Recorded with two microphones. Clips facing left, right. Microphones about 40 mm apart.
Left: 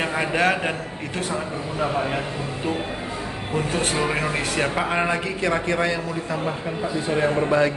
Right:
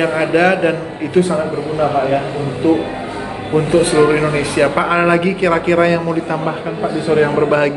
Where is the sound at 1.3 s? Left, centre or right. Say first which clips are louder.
Right 10 dB; right.